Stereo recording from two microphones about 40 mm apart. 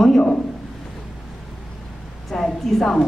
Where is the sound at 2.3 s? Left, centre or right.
Centre.